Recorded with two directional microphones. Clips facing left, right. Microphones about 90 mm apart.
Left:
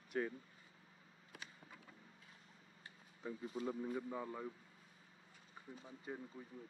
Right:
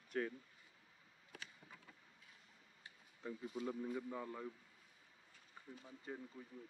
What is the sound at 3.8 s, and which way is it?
Speech, 20° left (ahead or behind).